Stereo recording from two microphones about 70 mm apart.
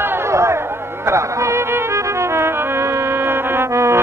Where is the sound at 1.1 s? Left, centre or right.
Right.